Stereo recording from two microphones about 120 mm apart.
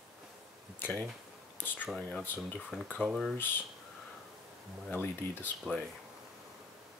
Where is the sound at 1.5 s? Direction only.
15° left (ahead or behind).